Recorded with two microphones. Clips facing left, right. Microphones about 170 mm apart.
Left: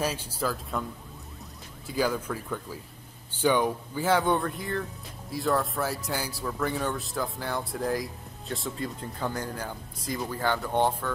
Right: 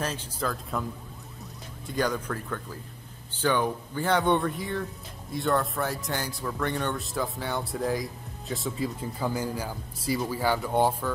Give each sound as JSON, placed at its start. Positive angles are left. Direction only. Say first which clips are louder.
{"t": 0.0, "sound": "speech", "louder": "left 2 dB", "side_deg": 10}
{"t": 1.9, "sound": "speech", "louder": "even", "side_deg": 5}